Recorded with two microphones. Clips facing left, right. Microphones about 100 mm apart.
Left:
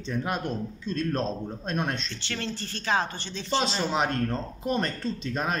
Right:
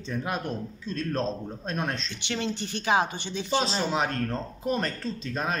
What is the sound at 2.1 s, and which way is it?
A woman's voice, 15° right (ahead or behind).